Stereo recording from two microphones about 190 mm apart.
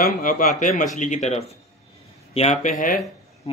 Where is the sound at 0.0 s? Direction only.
45° left (ahead or behind).